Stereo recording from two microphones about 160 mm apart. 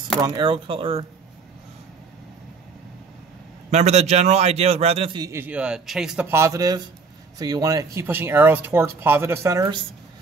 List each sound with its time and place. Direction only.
0.2 s a man's voice: 25° right (ahead or behind)
3.7 s a man's voice: 45° right (ahead or behind)
5.2 s speech: 15° right (ahead or behind)